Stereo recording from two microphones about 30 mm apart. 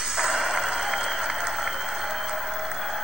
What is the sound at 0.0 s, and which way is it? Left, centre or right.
Applause, right.